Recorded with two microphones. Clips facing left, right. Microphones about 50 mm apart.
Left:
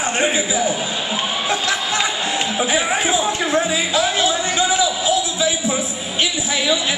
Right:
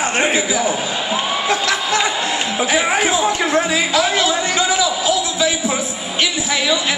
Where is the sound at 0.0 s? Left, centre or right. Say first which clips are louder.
Right 2 dB; right.